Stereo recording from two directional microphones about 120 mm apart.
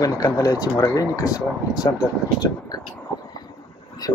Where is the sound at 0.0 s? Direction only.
30° left (ahead or behind).